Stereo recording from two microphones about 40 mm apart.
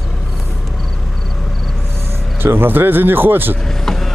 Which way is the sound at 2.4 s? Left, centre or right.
Right.